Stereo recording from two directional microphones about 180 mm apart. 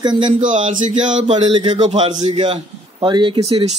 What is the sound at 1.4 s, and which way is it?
Speech, 25° right (ahead or behind).